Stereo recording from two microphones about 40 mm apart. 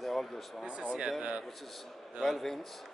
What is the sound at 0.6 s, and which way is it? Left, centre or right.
Speech, right.